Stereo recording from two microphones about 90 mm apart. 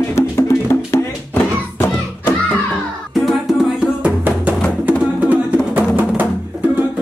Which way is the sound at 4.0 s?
15° right (ahead or behind).